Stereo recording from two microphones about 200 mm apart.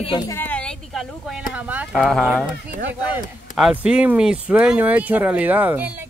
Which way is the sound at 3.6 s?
5° right (ahead or behind).